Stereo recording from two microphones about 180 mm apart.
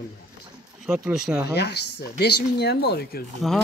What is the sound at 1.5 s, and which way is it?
Speech, 65° left (ahead or behind).